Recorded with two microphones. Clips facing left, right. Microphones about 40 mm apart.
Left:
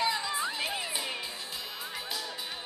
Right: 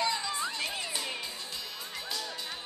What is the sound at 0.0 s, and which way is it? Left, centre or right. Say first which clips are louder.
Music: left 1 dB; centre.